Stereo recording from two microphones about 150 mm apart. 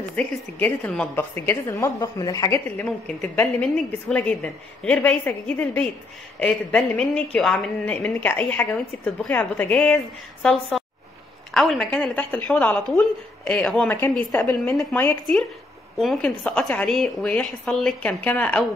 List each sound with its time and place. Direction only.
0.1 s a woman's voice: 10° left (ahead or behind)
2.8 s a woman's voice: 10° left (ahead or behind)